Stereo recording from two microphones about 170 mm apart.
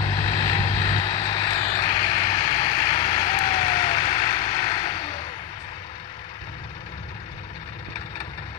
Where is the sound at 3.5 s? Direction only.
40° left (ahead or behind).